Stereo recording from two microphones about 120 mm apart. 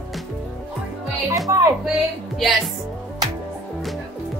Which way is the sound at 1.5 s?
25° right (ahead or behind).